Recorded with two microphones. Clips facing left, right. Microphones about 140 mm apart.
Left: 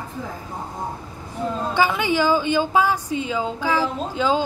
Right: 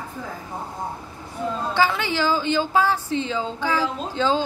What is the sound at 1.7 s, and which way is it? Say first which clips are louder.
A woman's voice: left 2 dB; 15° left (ahead or behind).